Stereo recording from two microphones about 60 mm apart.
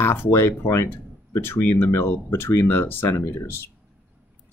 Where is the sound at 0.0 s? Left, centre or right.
Left.